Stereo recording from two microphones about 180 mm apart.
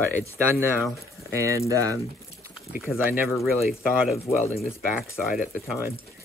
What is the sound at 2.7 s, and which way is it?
Speech, 5° right (ahead or behind).